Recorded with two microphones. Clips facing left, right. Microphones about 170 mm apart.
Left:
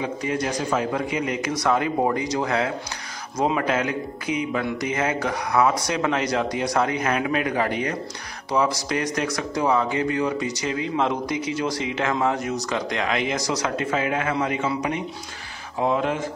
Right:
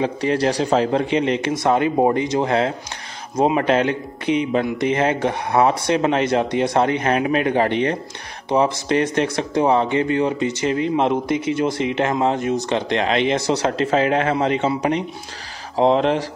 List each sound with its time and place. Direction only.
0.0 s a man's voice: 75° right (ahead or behind)
0.6 s a man's voice: 30° right (ahead or behind)
11.2 s speech: 55° right (ahead or behind)
12.0 s a man's voice: 25° right (ahead or behind)
15.8 s speech: 80° right